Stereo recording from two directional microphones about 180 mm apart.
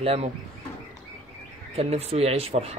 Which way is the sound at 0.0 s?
35° right (ahead or behind).